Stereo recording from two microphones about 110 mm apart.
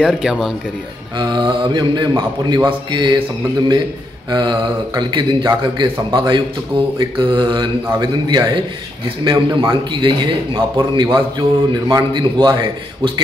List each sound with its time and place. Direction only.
0.0 s speech: 5° right (ahead or behind)
1.1 s speech: 40° right (ahead or behind)
4.3 s a man's voice: 40° right (ahead or behind)